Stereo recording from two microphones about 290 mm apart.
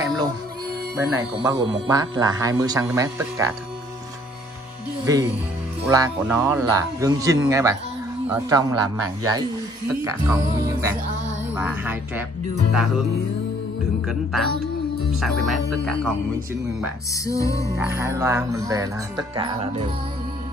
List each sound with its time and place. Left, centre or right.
0.9 s speech: centre
5.1 s speech: centre
10.2 s speech: centre
14.0 s speech: centre
17.1 s music: centre
17.7 s speech: centre